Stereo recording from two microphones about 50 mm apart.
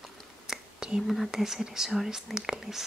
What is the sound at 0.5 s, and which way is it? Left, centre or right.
Whispering, centre.